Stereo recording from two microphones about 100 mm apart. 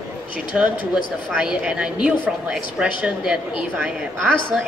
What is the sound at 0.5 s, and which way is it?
Speech, 10° right (ahead or behind).